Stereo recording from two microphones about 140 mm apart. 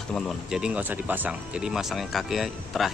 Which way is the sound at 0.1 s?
5° right (ahead or behind).